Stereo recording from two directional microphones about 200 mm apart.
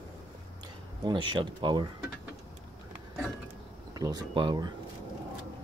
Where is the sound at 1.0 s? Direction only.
25° right (ahead or behind).